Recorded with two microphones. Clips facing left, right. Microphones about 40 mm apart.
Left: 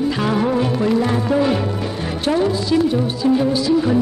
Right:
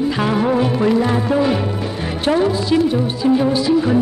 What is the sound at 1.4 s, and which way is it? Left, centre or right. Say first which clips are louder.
Music: left 1 dB; centre.